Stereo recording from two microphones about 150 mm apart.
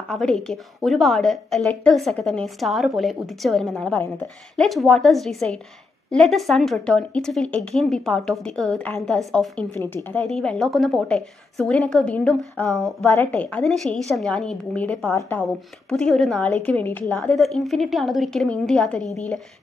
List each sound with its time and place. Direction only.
0.1 s a woman's voice: 5° left (ahead or behind)
9.8 s a woman's voice: 15° left (ahead or behind)
10.2 s speech: 5° left (ahead or behind)
13.0 s a woman's voice: 10° left (ahead or behind)
15.9 s speech: centre (ahead or behind)